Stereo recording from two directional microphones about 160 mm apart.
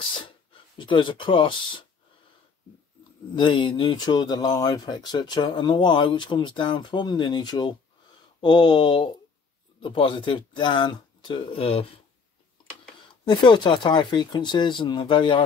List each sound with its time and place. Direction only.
0.2 s speech: 30° left (ahead or behind)
3.3 s speech: 30° left (ahead or behind)
13.1 s speech: 30° left (ahead or behind)